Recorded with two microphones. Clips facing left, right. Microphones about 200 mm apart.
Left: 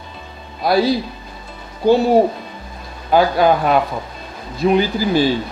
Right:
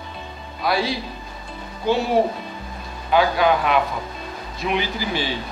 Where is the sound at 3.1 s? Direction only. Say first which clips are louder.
Left 4 dB; 40° left (ahead or behind).